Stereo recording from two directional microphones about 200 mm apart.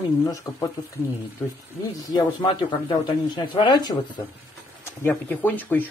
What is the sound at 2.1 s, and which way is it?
Speech, 25° left (ahead or behind).